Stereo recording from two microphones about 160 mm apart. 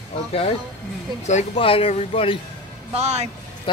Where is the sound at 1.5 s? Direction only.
35° left (ahead or behind).